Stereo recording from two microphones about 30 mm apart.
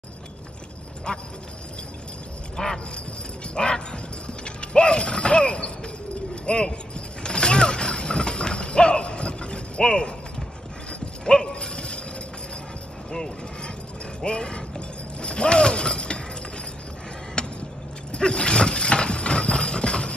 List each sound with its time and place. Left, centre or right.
1.1 s speech: left
2.5 s a sound: centre
3.5 s a sound: left
6.4 s speech: left
7.2 s mechanisms: left
10.9 s dog: left
14.2 s speech: left
17.4 s a sound: left
18.1 s horse: left